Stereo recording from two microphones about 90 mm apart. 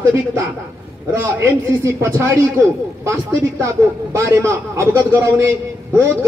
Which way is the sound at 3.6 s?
30° right (ahead or behind).